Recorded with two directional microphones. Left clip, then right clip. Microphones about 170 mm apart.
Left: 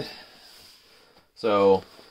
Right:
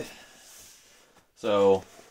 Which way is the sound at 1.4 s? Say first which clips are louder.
Left 2 dB; 30° left (ahead or behind).